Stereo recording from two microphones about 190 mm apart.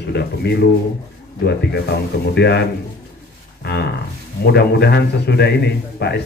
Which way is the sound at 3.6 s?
60° left (ahead or behind).